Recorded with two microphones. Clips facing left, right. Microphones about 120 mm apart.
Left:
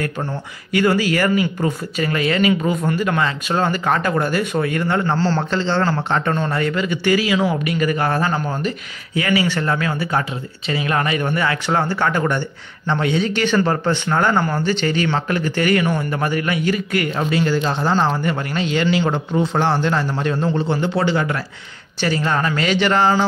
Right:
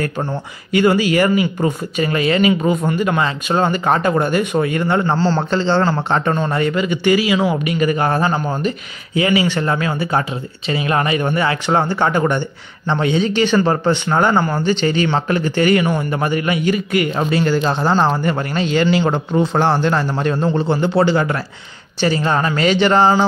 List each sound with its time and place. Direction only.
0.7 s a man's voice: 20° right (ahead or behind)
5.5 s speech: 30° right (ahead or behind)
6.3 s a man's voice: 15° right (ahead or behind)
17.2 s a man's voice: 40° right (ahead or behind)